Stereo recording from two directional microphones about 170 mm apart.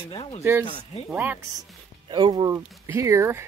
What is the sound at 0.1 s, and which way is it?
Speech, 30° left (ahead or behind).